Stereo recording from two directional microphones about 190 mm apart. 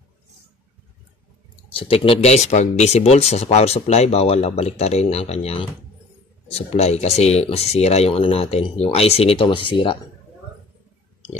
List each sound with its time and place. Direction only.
1.7 s speech: 30° left (ahead or behind)